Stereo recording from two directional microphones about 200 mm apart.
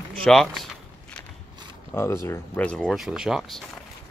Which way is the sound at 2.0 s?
15° left (ahead or behind).